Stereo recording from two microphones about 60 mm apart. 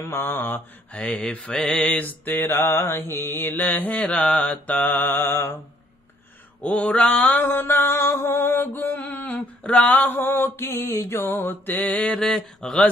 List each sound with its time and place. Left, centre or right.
0.0 s mantra: left
0.9 s speech: left
1.6 s mantra: centre
2.0 s mantra: left
2.5 s mantra: left
4.1 s mantra: centre; by 5.6 s left
6.6 s mantra: left
9.6 s a sound: centre
9.9 s mantra: left
12.3 s speech: centre